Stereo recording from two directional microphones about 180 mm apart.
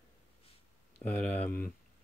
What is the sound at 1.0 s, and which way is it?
Speech, 10° left (ahead or behind).